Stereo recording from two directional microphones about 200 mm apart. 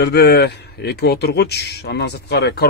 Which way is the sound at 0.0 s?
55° left (ahead or behind).